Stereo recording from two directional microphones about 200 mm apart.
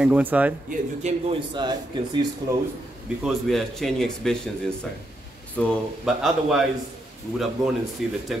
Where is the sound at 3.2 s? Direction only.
Centre (ahead or behind).